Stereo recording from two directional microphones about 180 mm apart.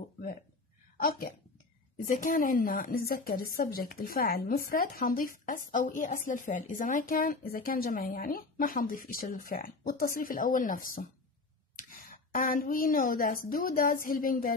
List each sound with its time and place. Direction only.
0.9 s a woman's voice: 50° left (ahead or behind)